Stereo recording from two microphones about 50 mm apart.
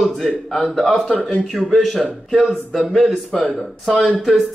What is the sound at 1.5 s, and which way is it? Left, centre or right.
A man's voice, centre.